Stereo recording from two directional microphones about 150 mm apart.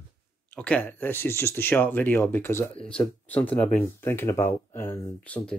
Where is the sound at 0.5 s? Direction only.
10° left (ahead or behind).